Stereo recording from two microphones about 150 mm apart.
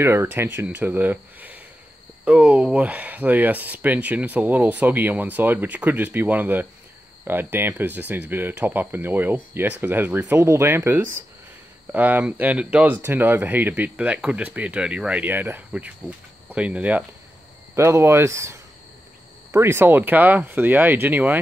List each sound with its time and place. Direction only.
0.0 s speech: 15° right (ahead or behind)